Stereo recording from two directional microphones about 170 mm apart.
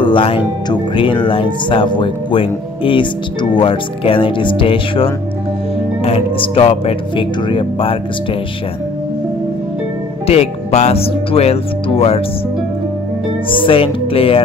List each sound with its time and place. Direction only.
0.0 s speech: 30° left (ahead or behind)
10.2 s speech: 40° left (ahead or behind)
13.5 s speech: 30° left (ahead or behind)